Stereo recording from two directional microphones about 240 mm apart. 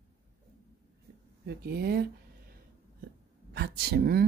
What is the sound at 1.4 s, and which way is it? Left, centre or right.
Speech, right.